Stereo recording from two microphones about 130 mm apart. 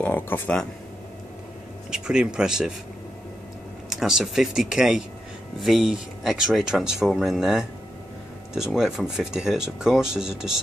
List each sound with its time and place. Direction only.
0.0 s speech: 15° left (ahead or behind)
1.9 s speech: 5° right (ahead or behind)
3.9 s speech: 5° right (ahead or behind)
8.7 s speech: 5° right (ahead or behind)